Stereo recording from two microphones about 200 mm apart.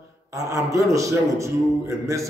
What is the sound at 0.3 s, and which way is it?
A man's voice, 15° right (ahead or behind).